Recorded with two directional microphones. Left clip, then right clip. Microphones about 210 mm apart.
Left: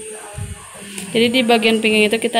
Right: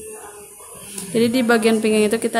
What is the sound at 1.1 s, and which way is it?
A woman's voice, 10° right (ahead or behind).